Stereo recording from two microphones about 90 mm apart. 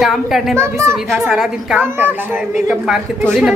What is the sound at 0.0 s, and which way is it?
Speech, centre (ahead or behind).